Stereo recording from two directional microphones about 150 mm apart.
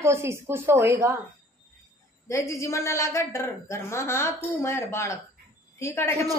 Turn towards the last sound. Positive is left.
turn(degrees=20)  # may be behind; listen again after turning